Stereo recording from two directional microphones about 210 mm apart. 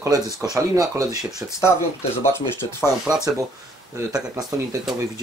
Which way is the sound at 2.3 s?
10° left (ahead or behind).